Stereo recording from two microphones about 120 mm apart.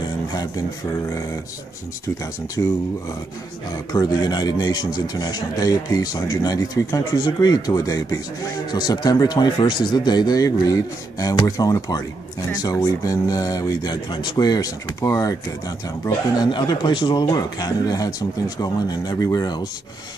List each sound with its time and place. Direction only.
2.6 s speech: 25° left (ahead or behind)